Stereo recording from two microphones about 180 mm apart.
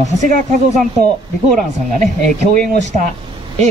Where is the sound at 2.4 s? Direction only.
40° right (ahead or behind).